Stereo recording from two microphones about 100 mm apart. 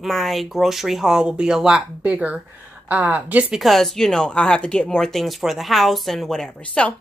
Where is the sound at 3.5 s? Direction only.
Centre (ahead or behind).